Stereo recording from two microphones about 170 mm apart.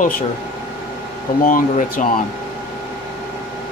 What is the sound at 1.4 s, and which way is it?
Speech, 55° left (ahead or behind).